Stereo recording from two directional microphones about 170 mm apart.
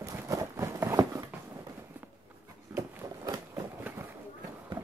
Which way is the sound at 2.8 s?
20° right (ahead or behind).